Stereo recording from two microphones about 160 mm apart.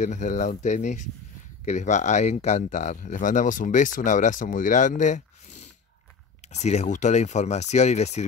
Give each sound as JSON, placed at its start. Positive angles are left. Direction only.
{"t": 0.0, "sound": "speech", "side_deg": 50}